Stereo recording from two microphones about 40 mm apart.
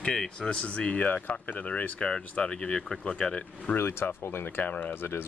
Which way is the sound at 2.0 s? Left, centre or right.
Left.